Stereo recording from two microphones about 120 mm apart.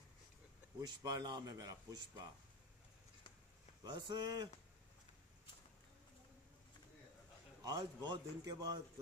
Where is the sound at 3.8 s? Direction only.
40° right (ahead or behind).